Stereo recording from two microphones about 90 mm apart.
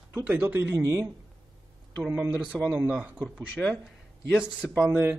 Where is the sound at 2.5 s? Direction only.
Centre (ahead or behind).